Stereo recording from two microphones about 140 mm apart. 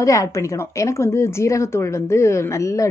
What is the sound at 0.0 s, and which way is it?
A woman's voice, 25° left (ahead or behind).